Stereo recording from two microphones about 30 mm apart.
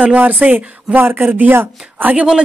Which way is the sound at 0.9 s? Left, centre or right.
Right.